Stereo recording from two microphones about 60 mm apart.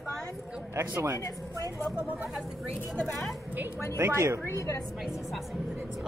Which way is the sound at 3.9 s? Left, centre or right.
Right.